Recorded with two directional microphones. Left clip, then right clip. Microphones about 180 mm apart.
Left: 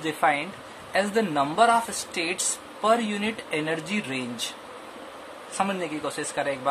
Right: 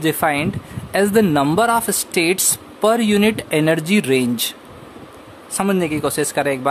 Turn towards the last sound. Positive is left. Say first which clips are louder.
# right 9 dB
turn(degrees=-55)  # may be behind; listen again after turning